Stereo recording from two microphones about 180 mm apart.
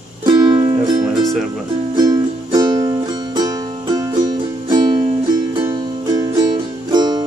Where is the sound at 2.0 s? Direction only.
20° right (ahead or behind).